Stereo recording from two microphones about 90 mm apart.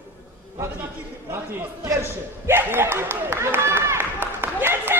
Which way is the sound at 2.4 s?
25° right (ahead or behind).